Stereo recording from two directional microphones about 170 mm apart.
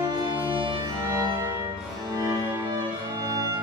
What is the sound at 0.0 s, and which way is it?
Music, 25° right (ahead or behind).